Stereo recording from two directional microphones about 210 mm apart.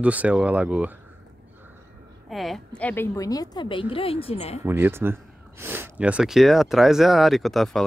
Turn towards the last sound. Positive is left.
turn(degrees=0)  # may be behind; listen again after turning